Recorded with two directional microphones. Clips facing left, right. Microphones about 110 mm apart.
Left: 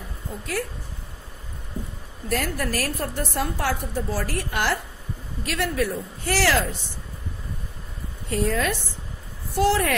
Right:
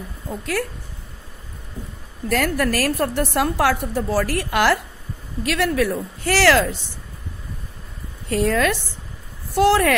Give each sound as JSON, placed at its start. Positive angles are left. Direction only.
{"t": 2.2, "sound": "a woman's voice", "side_deg": -80}
{"t": 8.3, "sound": "speech", "side_deg": -85}
{"t": 9.6, "sound": "speech", "side_deg": -75}